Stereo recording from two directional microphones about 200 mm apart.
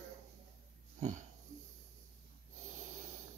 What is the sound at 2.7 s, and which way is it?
Snort, 40° right (ahead or behind).